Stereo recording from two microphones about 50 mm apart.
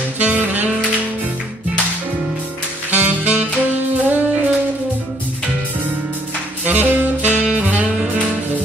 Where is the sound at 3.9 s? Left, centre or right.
Right.